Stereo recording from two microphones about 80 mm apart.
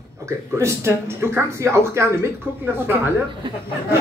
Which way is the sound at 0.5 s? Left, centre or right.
Right.